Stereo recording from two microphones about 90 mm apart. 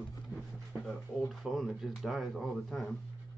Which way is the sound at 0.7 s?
Centre (ahead or behind).